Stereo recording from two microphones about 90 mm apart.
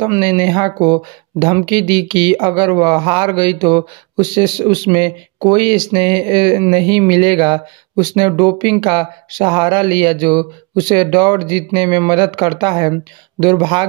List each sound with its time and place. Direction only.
0.2 s speech: 60° right (ahead or behind)